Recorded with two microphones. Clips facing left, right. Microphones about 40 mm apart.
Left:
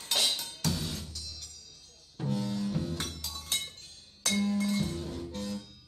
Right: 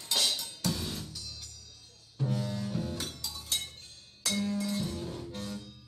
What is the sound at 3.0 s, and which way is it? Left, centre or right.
Music, left.